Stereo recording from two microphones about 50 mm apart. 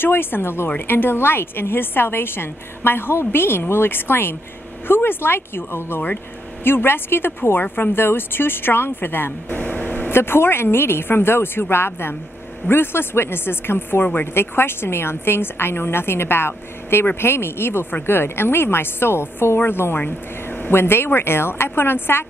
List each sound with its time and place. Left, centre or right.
0.0 s a woman's voice: left
9.6 s a sound: left
10.1 s a woman's voice: left